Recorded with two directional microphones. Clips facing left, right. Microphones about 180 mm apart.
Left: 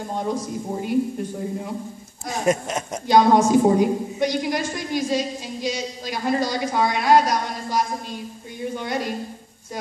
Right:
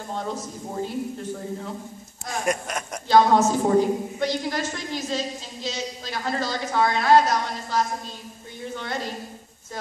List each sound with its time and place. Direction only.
0.1 s a woman's voice: 15° left (ahead or behind)
2.3 s a sound: 25° left (ahead or behind)
3.1 s a woman's voice: 15° left (ahead or behind)